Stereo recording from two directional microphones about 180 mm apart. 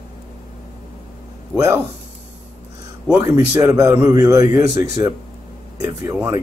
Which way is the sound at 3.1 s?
15° right (ahead or behind).